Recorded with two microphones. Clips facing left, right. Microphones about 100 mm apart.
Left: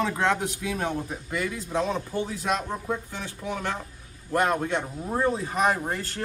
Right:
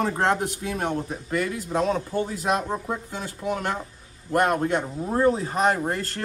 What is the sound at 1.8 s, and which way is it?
Speech, 25° right (ahead or behind).